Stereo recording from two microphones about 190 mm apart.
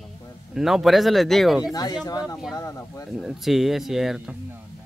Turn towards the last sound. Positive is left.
turn(degrees=0)  # may be behind; listen again after turning